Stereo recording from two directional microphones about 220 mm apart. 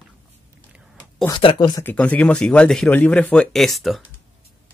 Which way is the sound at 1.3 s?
20° left (ahead or behind).